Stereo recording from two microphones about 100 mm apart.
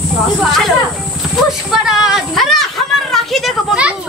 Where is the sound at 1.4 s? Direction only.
5° right (ahead or behind).